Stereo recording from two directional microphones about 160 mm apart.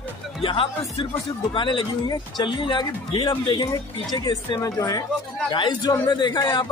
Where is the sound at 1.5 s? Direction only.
30° left (ahead or behind).